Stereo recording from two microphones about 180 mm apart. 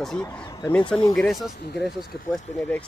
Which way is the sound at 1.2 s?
Centre (ahead or behind).